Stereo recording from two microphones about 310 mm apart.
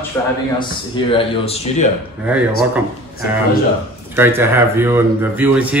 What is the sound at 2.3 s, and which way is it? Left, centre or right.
Speech, centre.